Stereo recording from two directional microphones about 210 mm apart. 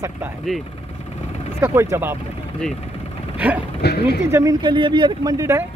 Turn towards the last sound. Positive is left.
turn(degrees=-15)  # may be behind; listen again after turning